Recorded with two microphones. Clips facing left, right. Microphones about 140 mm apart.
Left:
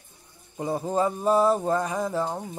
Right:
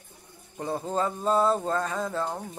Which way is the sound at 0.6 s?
10° left (ahead or behind).